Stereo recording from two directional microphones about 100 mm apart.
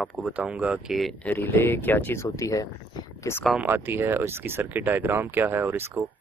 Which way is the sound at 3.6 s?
20° right (ahead or behind).